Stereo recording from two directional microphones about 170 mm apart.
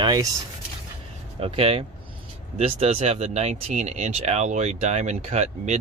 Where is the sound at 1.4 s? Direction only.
35° right (ahead or behind).